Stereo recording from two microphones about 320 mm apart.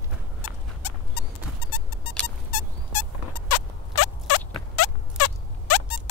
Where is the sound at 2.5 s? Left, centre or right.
Left.